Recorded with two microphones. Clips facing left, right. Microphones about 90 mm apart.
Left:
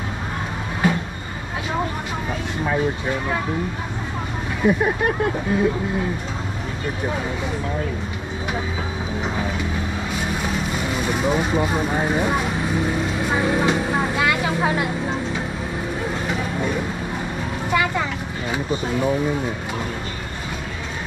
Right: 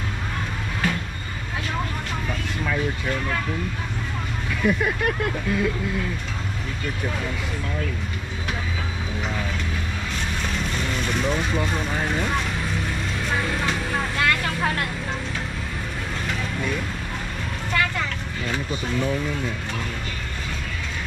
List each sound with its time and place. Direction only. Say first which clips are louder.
4.6 s speech: left 4 dB; 35° left (ahead or behind)
10.1 s vehicle: left 4 dB; 10° left (ahead or behind)
16.3 s vehicle: left 2 dB; 20° left (ahead or behind)
17.6 s speech: left 4 dB; 15° left (ahead or behind)